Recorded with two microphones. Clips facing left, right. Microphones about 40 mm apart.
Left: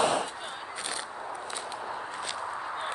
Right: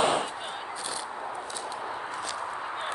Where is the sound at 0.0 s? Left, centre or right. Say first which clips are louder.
Right 1 dB; right.